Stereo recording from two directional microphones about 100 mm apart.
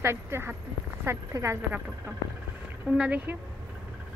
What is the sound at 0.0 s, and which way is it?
Speech, 25° right (ahead or behind).